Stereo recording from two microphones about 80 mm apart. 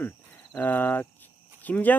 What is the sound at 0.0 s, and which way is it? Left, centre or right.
Speech, left.